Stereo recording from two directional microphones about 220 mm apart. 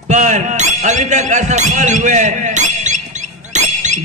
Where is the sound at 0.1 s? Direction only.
30° right (ahead or behind).